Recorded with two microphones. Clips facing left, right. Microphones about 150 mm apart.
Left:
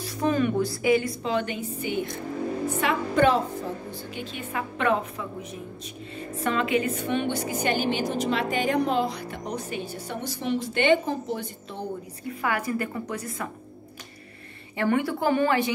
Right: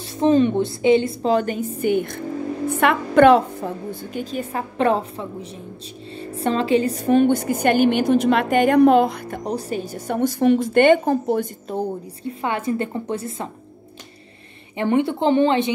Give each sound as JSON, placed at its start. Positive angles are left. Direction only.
{"t": 0.0, "sound": "a woman's voice", "side_deg": -25}
{"t": 1.2, "sound": "a woman's voice", "side_deg": -40}
{"t": 4.1, "sound": "a woman's voice", "side_deg": -40}
{"t": 9.5, "sound": "a woman's voice", "side_deg": -35}
{"t": 12.2, "sound": "a woman's voice", "side_deg": -25}
{"t": 14.8, "sound": "a woman's voice", "side_deg": -20}